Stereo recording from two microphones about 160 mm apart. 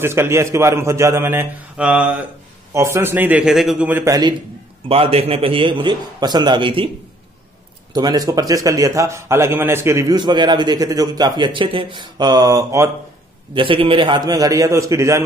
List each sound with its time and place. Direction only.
0.0 s a man's voice: 15° right (ahead or behind)
4.8 s a man's voice: 35° right (ahead or behind)
7.9 s a man's voice: 25° right (ahead or behind)
13.6 s a man's voice: 35° right (ahead or behind); by 15.2 s 20° right (ahead or behind)